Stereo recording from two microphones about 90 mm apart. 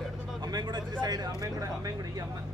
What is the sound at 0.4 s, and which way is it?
Vehicle, 50° right (ahead or behind).